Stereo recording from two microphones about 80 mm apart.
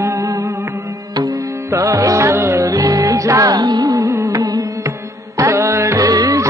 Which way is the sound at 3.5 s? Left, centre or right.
Right.